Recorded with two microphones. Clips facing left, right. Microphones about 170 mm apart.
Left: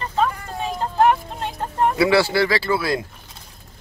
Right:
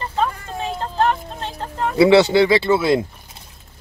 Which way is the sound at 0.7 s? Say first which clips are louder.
Left 3 dB; 10° left (ahead or behind).